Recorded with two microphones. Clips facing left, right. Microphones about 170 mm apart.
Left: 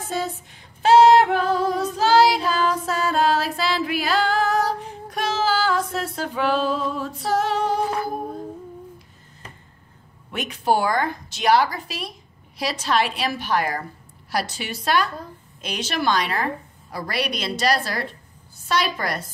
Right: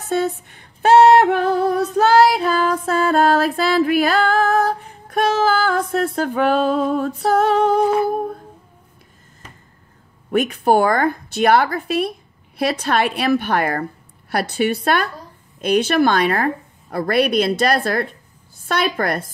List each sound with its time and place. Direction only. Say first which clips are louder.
0.1 s female singing: right 8 dB; 60° right (ahead or behind)
10.3 s a woman's voice: right 6 dB; 55° right (ahead or behind)